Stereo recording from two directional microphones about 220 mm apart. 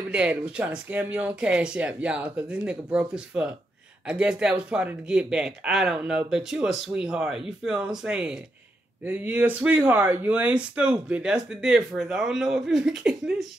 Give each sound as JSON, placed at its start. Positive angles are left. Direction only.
{"t": 0.1, "sound": "speech", "side_deg": -5}